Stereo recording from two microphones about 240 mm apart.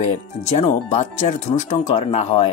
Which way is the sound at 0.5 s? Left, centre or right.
Left.